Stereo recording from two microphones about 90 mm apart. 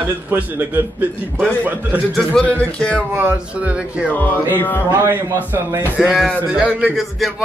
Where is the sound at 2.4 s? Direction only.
10° left (ahead or behind).